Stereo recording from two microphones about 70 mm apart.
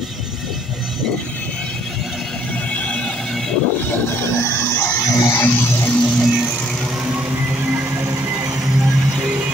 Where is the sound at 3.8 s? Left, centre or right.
Left.